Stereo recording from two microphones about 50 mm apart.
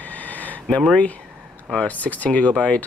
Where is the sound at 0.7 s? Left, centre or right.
Left.